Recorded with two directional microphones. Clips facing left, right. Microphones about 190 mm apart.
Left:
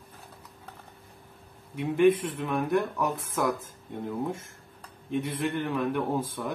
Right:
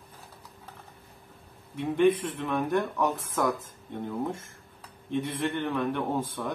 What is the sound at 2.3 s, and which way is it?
Speech, 5° left (ahead or behind).